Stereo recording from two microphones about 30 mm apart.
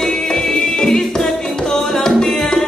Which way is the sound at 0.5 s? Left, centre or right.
Centre.